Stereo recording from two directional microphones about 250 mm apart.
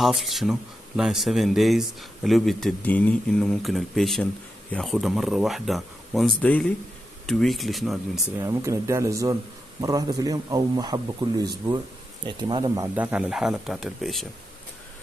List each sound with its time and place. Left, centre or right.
0.0 s speech: centre
8.5 s a man's voice: centre